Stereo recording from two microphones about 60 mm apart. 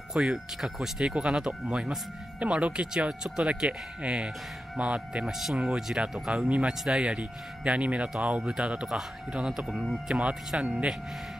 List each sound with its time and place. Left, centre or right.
0.1 s speech: centre
5.2 s speech: centre
6.3 s speech: centre